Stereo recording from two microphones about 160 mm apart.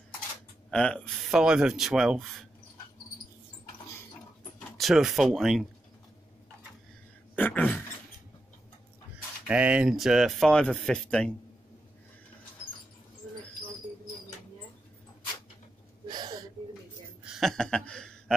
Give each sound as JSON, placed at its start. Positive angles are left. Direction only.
{"t": 0.7, "sound": "speech", "side_deg": 5}
{"t": 4.6, "sound": "speech", "side_deg": 0}
{"t": 7.3, "sound": "a sound", "side_deg": 10}
{"t": 9.5, "sound": "speech", "side_deg": -5}
{"t": 16.1, "sound": "gasp", "side_deg": -25}
{"t": 17.2, "sound": "a sound", "side_deg": 0}